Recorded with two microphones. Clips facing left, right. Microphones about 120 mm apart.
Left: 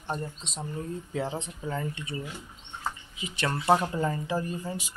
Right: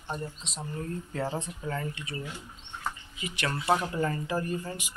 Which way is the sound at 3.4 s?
30° left (ahead or behind).